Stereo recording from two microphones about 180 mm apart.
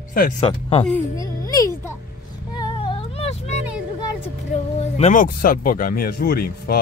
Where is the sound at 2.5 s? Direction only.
25° left (ahead or behind).